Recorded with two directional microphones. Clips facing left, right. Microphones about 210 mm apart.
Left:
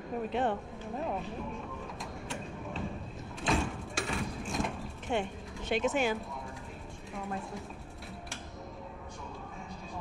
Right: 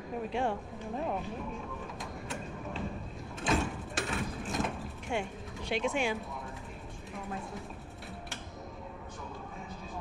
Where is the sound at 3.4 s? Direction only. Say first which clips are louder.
Even; centre (ahead or behind).